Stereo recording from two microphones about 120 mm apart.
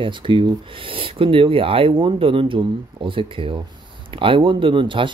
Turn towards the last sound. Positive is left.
turn(degrees=-45)  # may be behind; listen again after turning